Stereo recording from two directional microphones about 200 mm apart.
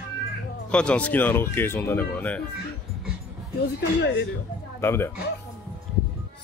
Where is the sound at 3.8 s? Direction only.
60° left (ahead or behind).